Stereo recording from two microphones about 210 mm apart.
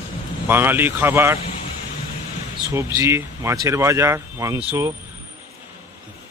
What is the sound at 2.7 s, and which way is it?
Speech, 15° right (ahead or behind).